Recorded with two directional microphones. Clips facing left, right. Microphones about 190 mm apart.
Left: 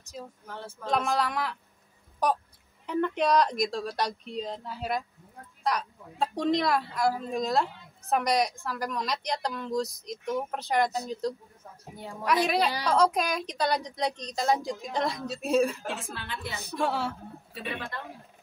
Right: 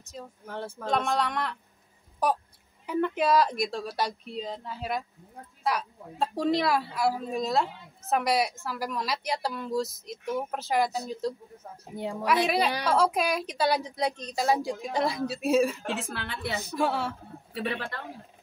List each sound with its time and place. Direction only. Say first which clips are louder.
0.0 s a woman's voice: even; centre (ahead or behind)
14.6 s a woman's voice: right 3 dB; 55° right (ahead or behind)
14.9 s a woman's voice: right 2 dB; 5° right (ahead or behind)
16.1 s a woman's voice: right 3 dB; 70° right (ahead or behind)
16.7 s a woman's voice: even; centre (ahead or behind)